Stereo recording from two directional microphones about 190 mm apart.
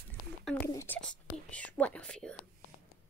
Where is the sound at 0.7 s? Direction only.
10° left (ahead or behind).